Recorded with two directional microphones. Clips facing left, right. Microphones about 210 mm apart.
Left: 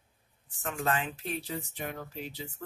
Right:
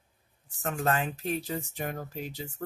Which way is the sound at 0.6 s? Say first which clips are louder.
Right 3 dB; 40° right (ahead or behind).